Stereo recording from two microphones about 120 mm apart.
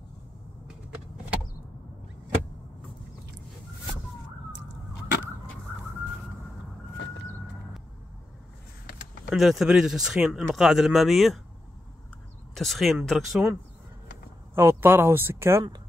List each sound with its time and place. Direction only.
9.2 s speech: centre (ahead or behind)
12.5 s speech: centre (ahead or behind)
14.5 s speech: 20° right (ahead or behind)